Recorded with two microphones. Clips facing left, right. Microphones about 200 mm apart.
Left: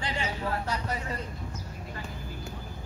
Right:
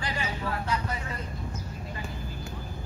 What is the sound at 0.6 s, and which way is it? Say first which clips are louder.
Vehicle: right 1 dB; 40° left (ahead or behind).